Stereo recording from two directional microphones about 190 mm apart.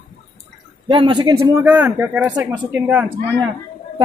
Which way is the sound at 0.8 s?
25° right (ahead or behind).